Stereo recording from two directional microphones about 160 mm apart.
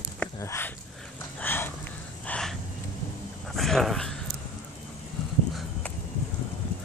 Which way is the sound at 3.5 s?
Centre (ahead or behind).